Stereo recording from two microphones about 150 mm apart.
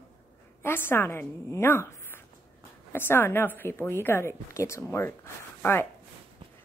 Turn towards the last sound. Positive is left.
turn(degrees=15)  # may be behind; listen again after turning